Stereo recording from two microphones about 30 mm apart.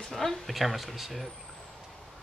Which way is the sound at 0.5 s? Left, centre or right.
Centre.